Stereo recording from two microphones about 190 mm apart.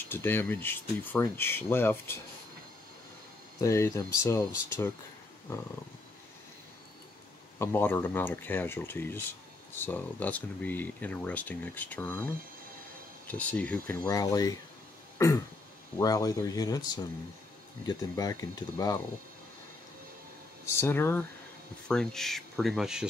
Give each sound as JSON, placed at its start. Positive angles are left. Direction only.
{"t": 0.1, "sound": "speech", "side_deg": 10}
{"t": 3.6, "sound": "speech", "side_deg": 15}
{"t": 7.5, "sound": "speech", "side_deg": 10}
{"t": 13.3, "sound": "speech", "side_deg": 10}
{"t": 14.0, "sound": "speech", "side_deg": 20}
{"t": 15.1, "sound": "throat clearing", "side_deg": 15}
{"t": 16.0, "sound": "speech", "side_deg": 20}
{"t": 20.6, "sound": "speech", "side_deg": 15}